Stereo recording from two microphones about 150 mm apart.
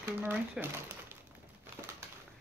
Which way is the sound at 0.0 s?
15° right (ahead or behind).